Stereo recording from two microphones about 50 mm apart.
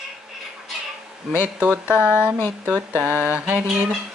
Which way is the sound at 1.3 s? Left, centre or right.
Right.